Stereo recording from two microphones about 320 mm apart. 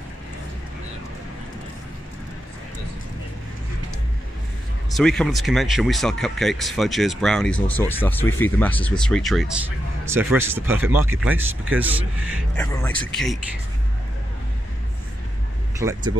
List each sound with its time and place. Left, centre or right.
4.9 s speech: centre
15.8 s speech: centre